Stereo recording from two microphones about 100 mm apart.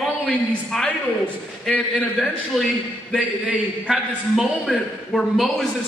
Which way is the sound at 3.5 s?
5° right (ahead or behind).